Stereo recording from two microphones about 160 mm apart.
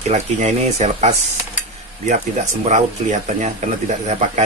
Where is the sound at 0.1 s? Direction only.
45° right (ahead or behind).